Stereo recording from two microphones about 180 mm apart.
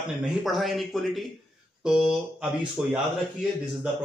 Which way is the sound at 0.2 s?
Centre (ahead or behind).